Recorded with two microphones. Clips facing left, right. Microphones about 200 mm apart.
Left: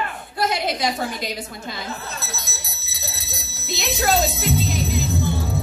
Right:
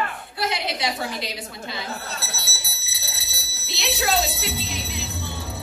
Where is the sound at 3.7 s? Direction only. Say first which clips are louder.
Left 3 dB; 45° left (ahead or behind).